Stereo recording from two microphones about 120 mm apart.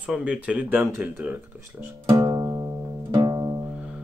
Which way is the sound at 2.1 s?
30° right (ahead or behind).